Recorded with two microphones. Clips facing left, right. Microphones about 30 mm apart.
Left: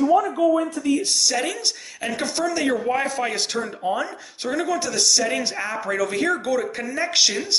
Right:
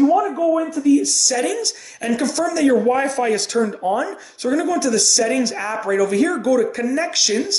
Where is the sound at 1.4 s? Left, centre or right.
Centre.